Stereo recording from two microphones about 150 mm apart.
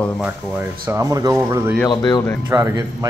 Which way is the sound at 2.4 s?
20° right (ahead or behind).